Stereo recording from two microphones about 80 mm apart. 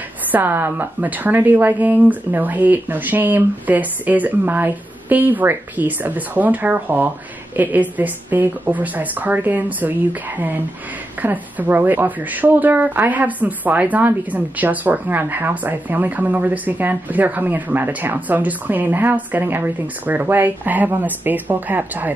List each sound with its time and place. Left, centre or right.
0.3 s speech: right